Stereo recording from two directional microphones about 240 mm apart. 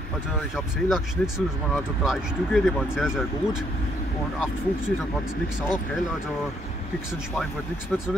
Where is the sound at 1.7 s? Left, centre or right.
Centre.